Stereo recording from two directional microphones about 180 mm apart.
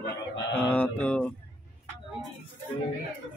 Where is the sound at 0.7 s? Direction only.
5° left (ahead or behind).